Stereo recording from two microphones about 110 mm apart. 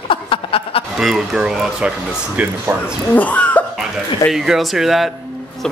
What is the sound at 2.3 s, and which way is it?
Speech, 15° right (ahead or behind).